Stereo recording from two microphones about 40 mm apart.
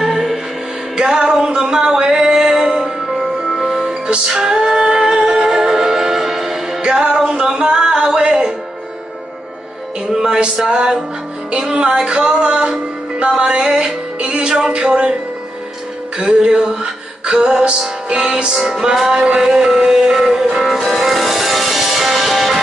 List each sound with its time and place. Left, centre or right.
0.0 s music: centre
0.9 s music: centre
6.8 s music: right
10.1 s music: centre
16.2 s music: right
20.6 s music: centre